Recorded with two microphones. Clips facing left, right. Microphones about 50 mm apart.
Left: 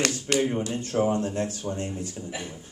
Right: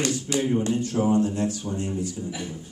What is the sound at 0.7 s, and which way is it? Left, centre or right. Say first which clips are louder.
A woman's voice: right 2 dB; left.